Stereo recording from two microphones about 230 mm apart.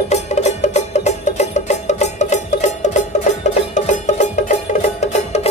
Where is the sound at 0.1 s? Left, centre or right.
Left.